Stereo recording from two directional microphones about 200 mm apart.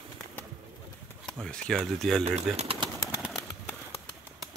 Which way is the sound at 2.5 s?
30° right (ahead or behind).